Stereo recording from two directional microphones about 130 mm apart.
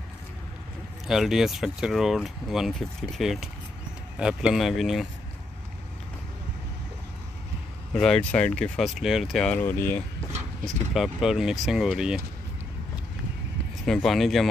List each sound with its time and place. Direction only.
1.0 s speech: 5° right (ahead or behind)
7.9 s speech: 5° left (ahead or behind)
9.6 s speech: 15° left (ahead or behind)
10.9 s speech: centre (ahead or behind)
13.8 s speech: centre (ahead or behind)